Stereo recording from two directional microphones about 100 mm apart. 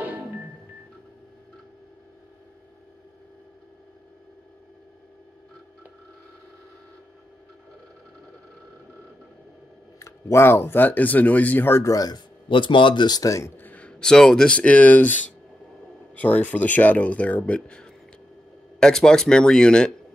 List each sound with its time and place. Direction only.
9.9 s speech: 30° left (ahead or behind)
11.8 s speech: 35° left (ahead or behind)
12.4 s speech: 55° left (ahead or behind); by 13.5 s 35° left (ahead or behind)
13.6 s speech: 15° left (ahead or behind)